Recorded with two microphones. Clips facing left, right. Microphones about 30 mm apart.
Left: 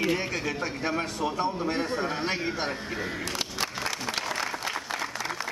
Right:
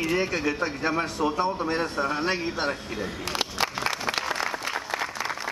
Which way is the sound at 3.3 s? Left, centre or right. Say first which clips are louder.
Right 4 dB; right.